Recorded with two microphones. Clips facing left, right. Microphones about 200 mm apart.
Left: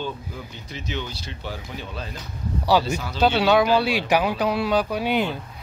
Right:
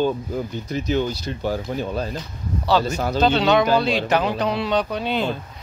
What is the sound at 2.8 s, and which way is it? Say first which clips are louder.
Speech: right 5 dB; 15° left (ahead or behind).